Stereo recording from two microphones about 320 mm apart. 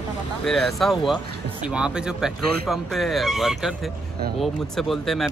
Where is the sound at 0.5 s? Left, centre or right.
Centre.